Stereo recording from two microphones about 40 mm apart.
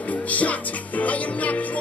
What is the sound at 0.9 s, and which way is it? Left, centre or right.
Music, left.